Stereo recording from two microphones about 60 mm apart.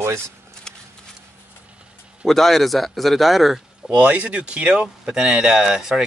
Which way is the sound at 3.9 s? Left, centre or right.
Right.